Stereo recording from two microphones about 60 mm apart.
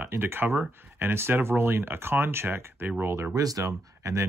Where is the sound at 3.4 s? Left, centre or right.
Right.